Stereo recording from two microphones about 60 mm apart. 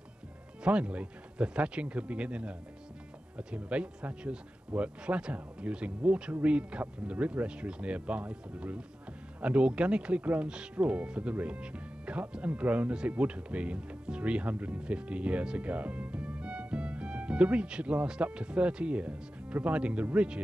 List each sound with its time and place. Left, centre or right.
0.7 s speech: centre